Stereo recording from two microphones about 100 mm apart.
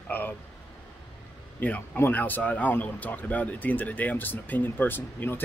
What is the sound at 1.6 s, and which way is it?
Speech, 20° left (ahead or behind).